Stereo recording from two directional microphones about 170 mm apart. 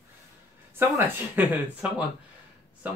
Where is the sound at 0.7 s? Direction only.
10° right (ahead or behind).